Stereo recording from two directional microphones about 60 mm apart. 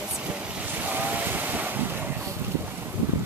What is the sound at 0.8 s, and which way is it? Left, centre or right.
Boat, right.